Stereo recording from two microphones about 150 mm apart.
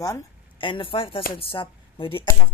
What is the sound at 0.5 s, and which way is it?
Speech, 35° left (ahead or behind).